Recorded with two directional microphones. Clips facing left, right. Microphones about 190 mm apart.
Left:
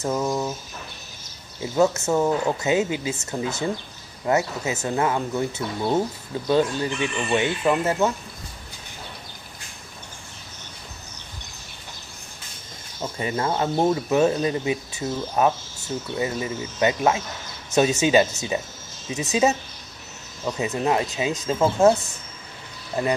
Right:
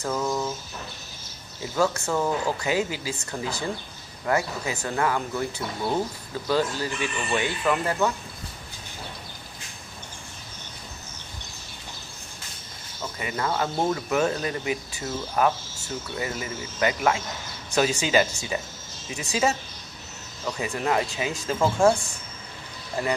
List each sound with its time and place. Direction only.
0.0 s speech: 20° left (ahead or behind)
1.6 s speech: 20° left (ahead or behind)
13.0 s speech: 25° left (ahead or behind)